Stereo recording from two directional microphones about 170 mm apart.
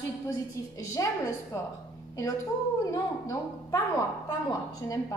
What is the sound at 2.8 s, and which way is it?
Speech, 20° left (ahead or behind).